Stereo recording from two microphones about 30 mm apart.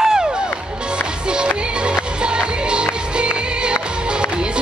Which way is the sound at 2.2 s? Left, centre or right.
Right.